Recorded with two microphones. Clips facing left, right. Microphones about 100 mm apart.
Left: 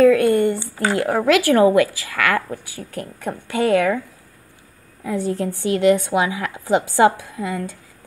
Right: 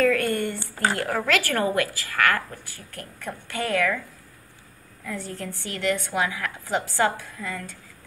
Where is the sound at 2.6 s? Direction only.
5° left (ahead or behind).